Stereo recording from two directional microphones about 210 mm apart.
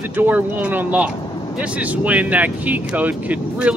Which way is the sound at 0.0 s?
10° right (ahead or behind).